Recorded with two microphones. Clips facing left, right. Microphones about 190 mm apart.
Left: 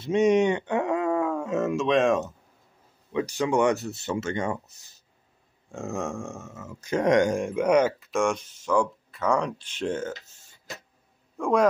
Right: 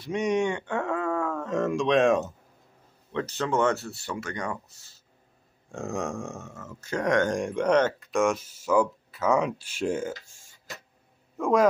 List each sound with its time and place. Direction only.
0.0 s speech: 25° left (ahead or behind); by 2.3 s centre (ahead or behind)
3.1 s speech: 10° left (ahead or behind)
5.7 s speech: centre (ahead or behind); by 7.2 s 20° left (ahead or behind)
7.2 s a man's voice: 5° left (ahead or behind)